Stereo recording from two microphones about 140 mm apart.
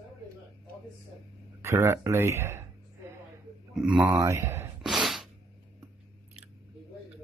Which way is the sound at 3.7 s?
5° right (ahead or behind).